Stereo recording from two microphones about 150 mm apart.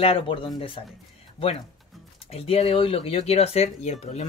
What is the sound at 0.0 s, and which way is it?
Speech, 40° left (ahead or behind).